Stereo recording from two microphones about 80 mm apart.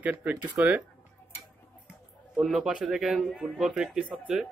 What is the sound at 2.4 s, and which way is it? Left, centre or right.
Speech, centre.